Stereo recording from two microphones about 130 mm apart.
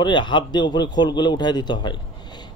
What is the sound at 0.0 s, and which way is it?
A man's voice, 35° left (ahead or behind).